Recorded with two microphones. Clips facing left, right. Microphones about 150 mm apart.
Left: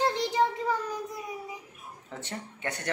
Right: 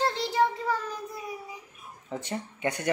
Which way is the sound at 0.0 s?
15° left (ahead or behind).